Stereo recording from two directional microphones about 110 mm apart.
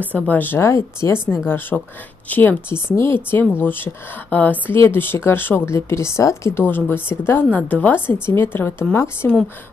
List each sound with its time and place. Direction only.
0.1 s speech: 15° left (ahead or behind)
1.7 s speech: centre (ahead or behind)
2.2 s a woman's voice: 15° left (ahead or behind)